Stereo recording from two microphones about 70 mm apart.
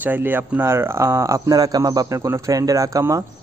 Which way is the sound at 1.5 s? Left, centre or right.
Right.